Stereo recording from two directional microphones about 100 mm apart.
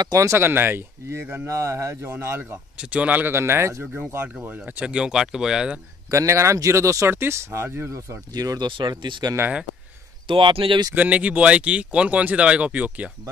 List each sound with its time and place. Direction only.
0.0 s speech: 35° right (ahead or behind)
2.8 s speech: 10° right (ahead or behind)
3.8 s speech: 10° right (ahead or behind)
6.0 s speech: 30° right (ahead or behind)
8.3 s speech: 40° right (ahead or behind)
8.6 s speech: 55° right (ahead or behind)
11.0 s speech: 15° right (ahead or behind)